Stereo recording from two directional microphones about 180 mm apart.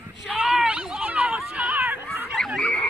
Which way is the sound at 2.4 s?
5° left (ahead or behind).